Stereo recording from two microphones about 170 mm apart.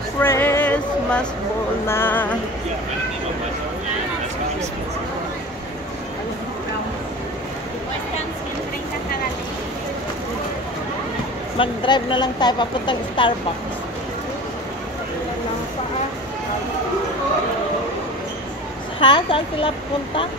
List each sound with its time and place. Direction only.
0.2 s music: 15° left (ahead or behind)
11.5 s speech: 30° left (ahead or behind)
18.9 s speech: 30° left (ahead or behind)